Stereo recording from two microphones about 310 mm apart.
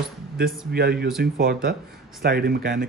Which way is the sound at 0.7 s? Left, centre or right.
Right.